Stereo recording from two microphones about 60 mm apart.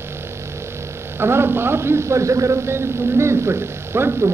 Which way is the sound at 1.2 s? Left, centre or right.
Right.